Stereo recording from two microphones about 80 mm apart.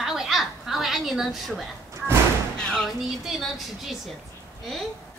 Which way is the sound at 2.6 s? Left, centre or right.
Centre.